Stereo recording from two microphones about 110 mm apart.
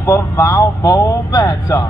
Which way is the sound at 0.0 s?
25° left (ahead or behind).